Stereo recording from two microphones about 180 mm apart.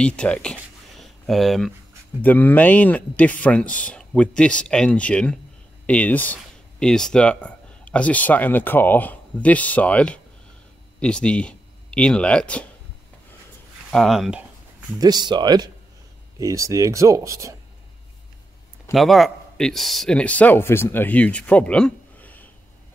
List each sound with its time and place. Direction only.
0.0 s a sound: 5° left (ahead or behind)
2.2 s speech: 10° left (ahead or behind)
13.8 s speech: centre (ahead or behind)
15.0 s speech: 20° right (ahead or behind)
18.9 s speech: centre (ahead or behind)